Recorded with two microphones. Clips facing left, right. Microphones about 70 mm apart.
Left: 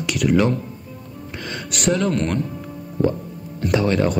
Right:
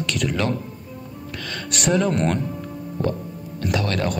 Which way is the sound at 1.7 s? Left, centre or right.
Centre.